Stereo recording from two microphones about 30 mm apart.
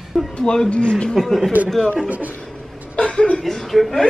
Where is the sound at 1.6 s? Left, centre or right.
Right.